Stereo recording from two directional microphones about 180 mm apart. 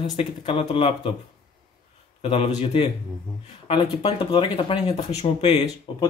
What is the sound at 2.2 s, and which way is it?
Speech, 30° left (ahead or behind).